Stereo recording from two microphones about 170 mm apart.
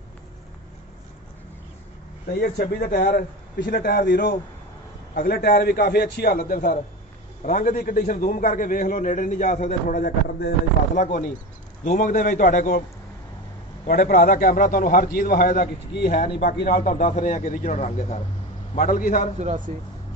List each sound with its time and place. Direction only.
2.3 s a man's voice: 65° left (ahead or behind)
13.8 s a man's voice: 55° left (ahead or behind)
16.9 s a man's voice: 45° left (ahead or behind)
19.4 s speech: 50° right (ahead or behind)